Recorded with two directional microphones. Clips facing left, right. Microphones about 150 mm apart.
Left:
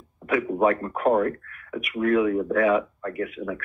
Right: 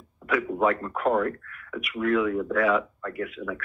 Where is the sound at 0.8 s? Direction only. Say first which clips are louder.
Left 3 dB; 45° left (ahead or behind).